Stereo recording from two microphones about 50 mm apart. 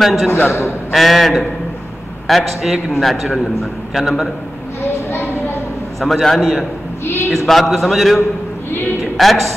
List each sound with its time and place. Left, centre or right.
0.0 s a man's voice: centre
0.5 s a man's voice: left
0.9 s a man's voice: centre
6.2 s a man's voice: centre